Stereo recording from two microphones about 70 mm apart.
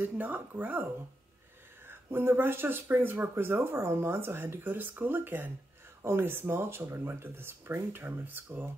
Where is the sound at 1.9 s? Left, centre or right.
Right.